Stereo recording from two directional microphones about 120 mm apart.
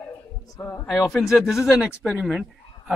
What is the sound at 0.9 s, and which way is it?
A man's voice, 5° left (ahead or behind).